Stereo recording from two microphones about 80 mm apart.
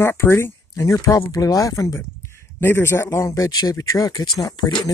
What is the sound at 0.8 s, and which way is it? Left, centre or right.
Speech, left.